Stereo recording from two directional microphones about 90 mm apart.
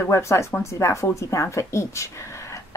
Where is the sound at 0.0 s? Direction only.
30° left (ahead or behind).